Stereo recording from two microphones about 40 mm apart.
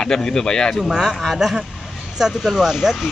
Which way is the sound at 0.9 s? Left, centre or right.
Centre.